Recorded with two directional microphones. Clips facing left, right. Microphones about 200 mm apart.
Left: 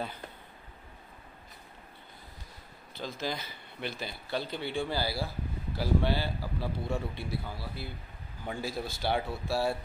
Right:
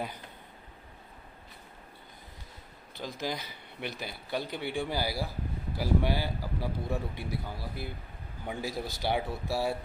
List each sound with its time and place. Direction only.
3.0 s speech: 15° right (ahead or behind)